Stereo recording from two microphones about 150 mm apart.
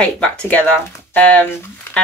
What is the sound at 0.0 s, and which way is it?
Speech, 5° left (ahead or behind).